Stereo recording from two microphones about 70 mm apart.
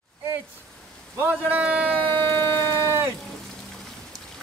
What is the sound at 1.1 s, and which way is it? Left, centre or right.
Speech, right.